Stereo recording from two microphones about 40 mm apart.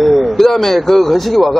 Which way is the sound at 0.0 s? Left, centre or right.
Centre.